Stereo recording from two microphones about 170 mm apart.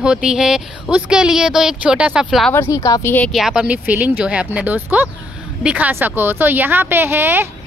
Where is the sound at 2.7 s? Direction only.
20° left (ahead or behind).